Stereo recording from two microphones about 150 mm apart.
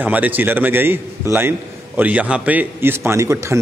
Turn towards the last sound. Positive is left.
turn(degrees=-20)  # may be behind; listen again after turning